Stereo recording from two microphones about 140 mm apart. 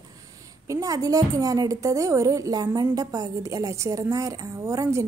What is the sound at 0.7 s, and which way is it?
A woman's voice, 25° right (ahead or behind).